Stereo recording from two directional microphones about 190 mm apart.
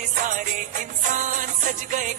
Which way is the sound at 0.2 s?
45° right (ahead or behind).